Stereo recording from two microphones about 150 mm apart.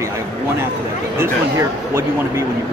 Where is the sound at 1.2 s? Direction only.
20° right (ahead or behind).